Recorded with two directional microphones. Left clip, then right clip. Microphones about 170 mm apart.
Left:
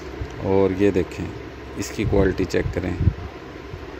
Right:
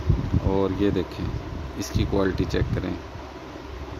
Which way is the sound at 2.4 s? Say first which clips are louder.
Left 4 dB; 15° right (ahead or behind).